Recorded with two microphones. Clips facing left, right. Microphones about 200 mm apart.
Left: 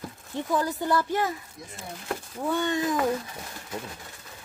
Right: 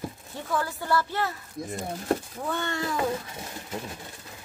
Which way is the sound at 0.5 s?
20° left (ahead or behind).